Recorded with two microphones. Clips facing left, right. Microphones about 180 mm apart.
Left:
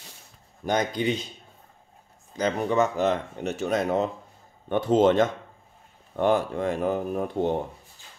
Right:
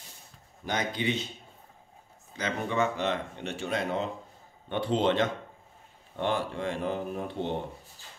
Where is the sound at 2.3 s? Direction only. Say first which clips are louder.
Left 6 dB; 40° left (ahead or behind).